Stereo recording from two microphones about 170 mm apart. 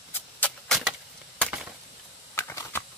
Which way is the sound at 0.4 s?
5° left (ahead or behind).